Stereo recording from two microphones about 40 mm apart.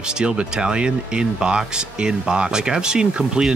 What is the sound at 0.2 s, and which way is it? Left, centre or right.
Speech, right.